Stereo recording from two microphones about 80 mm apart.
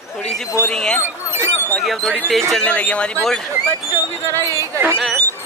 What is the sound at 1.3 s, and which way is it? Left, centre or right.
Speech, right.